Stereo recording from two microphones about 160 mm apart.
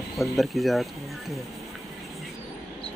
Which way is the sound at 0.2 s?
Centre (ahead or behind).